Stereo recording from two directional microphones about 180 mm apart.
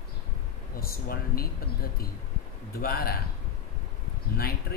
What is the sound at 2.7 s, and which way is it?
Speech, 55° left (ahead or behind).